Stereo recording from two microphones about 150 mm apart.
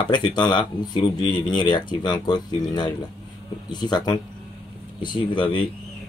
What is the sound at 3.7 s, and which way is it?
Speech, 30° left (ahead or behind).